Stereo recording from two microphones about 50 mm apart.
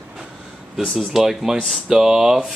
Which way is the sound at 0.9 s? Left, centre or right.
Centre.